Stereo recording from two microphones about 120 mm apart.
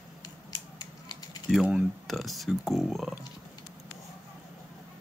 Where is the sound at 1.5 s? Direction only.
Centre (ahead or behind).